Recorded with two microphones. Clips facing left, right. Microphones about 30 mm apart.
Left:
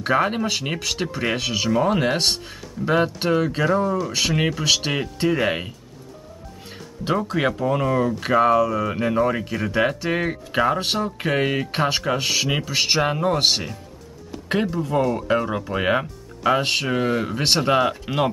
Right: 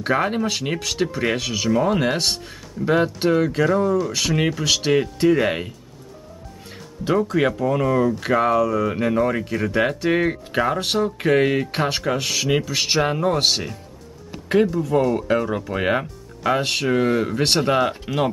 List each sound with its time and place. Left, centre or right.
0.0 s speech: centre
4.1 s speech: centre
7.3 s speech: centre
15.0 s speech: centre